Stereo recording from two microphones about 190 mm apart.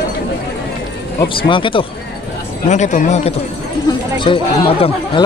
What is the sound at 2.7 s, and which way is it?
A man's voice, 40° left (ahead or behind).